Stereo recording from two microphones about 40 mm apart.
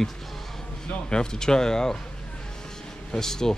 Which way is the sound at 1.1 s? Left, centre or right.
Centre.